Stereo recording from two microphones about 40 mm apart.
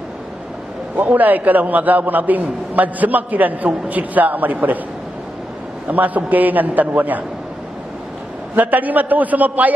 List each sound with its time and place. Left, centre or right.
1.0 s a man's voice: right
5.9 s a man's voice: right
8.5 s a man's voice: right